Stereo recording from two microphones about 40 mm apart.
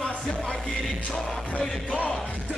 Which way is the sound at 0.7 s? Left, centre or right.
Centre.